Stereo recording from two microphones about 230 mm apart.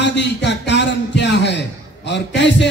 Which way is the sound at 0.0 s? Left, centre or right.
Left.